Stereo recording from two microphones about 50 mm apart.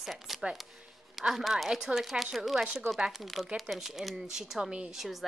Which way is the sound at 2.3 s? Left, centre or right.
Centre.